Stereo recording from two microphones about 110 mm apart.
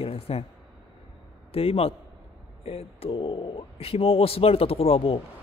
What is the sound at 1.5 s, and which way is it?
Speech, 60° left (ahead or behind).